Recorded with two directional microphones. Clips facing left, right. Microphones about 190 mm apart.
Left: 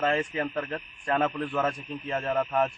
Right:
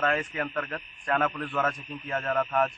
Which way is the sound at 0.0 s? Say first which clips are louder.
Left 2 dB; 30° left (ahead or behind).